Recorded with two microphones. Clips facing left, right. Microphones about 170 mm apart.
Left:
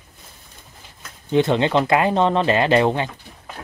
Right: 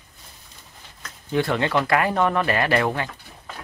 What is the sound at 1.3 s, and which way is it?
Speech, 20° left (ahead or behind).